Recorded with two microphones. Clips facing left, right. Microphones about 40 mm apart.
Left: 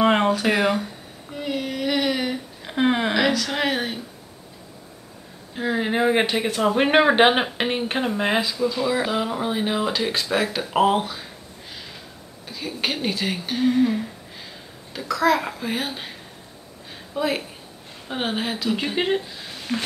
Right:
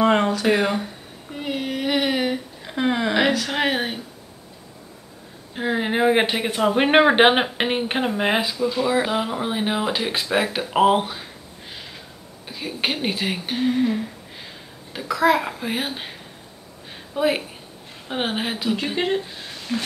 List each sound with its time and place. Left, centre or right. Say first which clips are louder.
0.0 s a sound: even; centre
1.3 s child singing: right 1 dB; centre
2.6 s a sound: left 2 dB; centre
3.2 s speech: right 1 dB; centre
5.5 s speech: even; centre
12.4 s speech: right 1 dB; centre
14.9 s a child's voice: right 1 dB; centre
17.1 s speech: right 3 dB; centre
18.9 s speech: left 1 dB; centre
19.7 s a sound: even; centre